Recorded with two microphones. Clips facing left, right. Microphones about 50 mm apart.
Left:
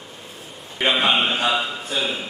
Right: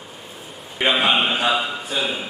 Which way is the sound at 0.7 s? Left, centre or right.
Centre.